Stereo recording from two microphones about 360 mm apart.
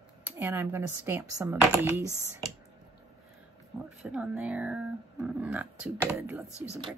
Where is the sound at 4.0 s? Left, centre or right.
Centre.